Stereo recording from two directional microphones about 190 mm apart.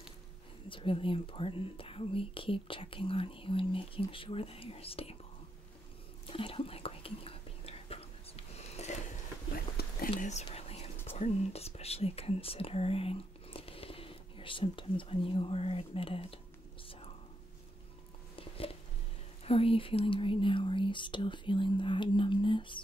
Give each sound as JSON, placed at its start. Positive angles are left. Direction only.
{"t": 0.7, "sound": "speech", "side_deg": 25}
{"t": 6.2, "sound": "whispering", "side_deg": 30}
{"t": 8.5, "sound": "a sound", "side_deg": 35}
{"t": 9.8, "sound": "whispering", "side_deg": 50}
{"t": 10.1, "sound": "whispering", "side_deg": 35}
{"t": 11.1, "sound": "speech", "side_deg": 35}
{"t": 18.4, "sound": "a sound", "side_deg": 30}
{"t": 19.4, "sound": "speech", "side_deg": 30}